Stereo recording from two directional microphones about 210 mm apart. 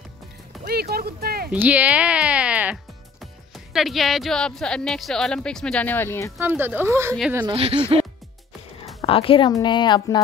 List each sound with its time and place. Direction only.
0.7 s speech: 50° right (ahead or behind)
1.5 s speech: 5° right (ahead or behind); by 6.3 s 10° left (ahead or behind)
6.3 s speech: 10° right (ahead or behind)
7.4 s speech: 25° right (ahead or behind)
9.0 s a woman's voice: 25° left (ahead or behind)